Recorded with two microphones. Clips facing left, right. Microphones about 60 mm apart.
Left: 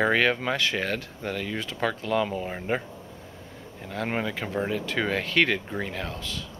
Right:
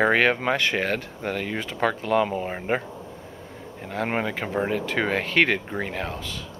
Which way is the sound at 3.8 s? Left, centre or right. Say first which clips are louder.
Right 3 dB; right.